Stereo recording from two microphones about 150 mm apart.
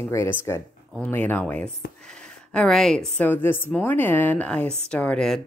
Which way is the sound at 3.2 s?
15° left (ahead or behind).